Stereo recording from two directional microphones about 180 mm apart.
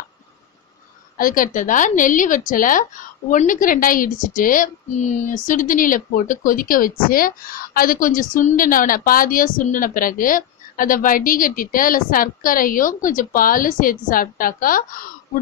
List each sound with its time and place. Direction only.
1.1 s a woman's voice: 50° left (ahead or behind)